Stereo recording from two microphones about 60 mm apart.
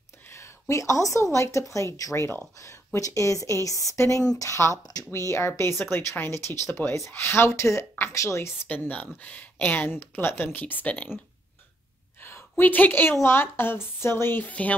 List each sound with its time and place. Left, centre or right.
0.3 s a woman's voice: left
3.9 s speech: left
4.8 s speech: left
5.5 s speech: left
8.6 s speech: left
12.2 s a sound: left
13.2 s speech: left
14.4 s speech: left